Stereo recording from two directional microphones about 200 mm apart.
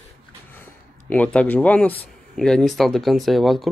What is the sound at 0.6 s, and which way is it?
A man's voice, 5° left (ahead or behind).